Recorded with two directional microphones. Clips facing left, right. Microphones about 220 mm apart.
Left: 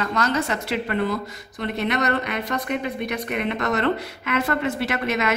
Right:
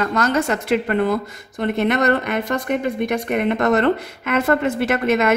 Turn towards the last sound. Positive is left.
turn(degrees=-50)  # may be behind; listen again after turning